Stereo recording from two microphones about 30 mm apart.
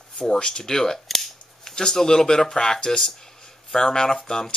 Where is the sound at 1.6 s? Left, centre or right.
Left.